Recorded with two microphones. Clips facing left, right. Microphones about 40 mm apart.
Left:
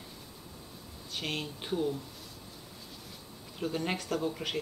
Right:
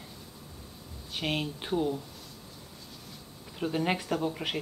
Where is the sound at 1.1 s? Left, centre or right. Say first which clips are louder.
Right 4 dB; centre.